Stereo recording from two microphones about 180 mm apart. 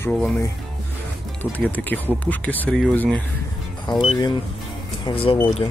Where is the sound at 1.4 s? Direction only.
10° left (ahead or behind).